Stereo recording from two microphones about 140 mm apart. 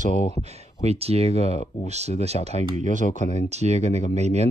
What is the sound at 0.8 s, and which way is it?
Speech, 45° right (ahead or behind).